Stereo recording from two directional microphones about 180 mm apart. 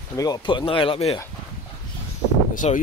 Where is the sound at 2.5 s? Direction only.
45° left (ahead or behind).